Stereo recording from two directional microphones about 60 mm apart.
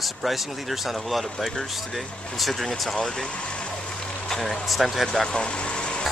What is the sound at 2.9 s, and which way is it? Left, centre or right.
Speech, centre.